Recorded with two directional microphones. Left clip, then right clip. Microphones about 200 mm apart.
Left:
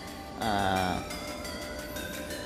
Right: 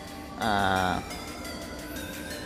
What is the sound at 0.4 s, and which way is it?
Music, 15° right (ahead or behind).